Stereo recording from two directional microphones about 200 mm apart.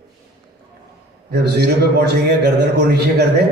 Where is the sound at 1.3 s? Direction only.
55° right (ahead or behind).